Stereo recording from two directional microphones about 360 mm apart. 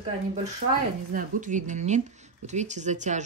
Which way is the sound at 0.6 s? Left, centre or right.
Right.